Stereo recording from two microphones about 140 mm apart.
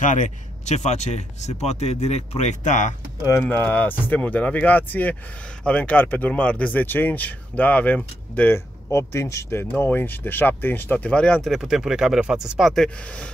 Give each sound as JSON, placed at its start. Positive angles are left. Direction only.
{"t": 0.0, "sound": "speech", "side_deg": 65}
{"t": 3.3, "sound": "speech", "side_deg": 15}